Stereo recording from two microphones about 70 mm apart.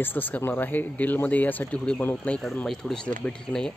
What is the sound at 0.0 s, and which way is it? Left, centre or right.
Speech, left.